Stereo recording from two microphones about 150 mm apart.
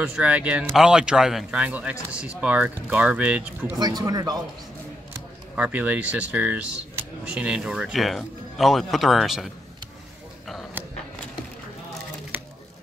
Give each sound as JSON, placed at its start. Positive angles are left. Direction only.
{"t": 0.0, "sound": "speech", "side_deg": -5}
{"t": 3.8, "sound": "speech", "side_deg": -25}
{"t": 5.6, "sound": "speech", "side_deg": -10}